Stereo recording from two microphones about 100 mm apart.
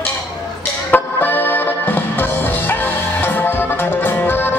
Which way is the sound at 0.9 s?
20° left (ahead or behind).